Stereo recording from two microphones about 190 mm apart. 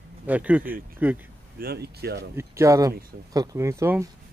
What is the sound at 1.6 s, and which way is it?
Speech, 55° right (ahead or behind).